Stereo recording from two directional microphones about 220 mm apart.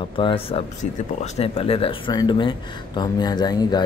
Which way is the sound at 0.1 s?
25° left (ahead or behind).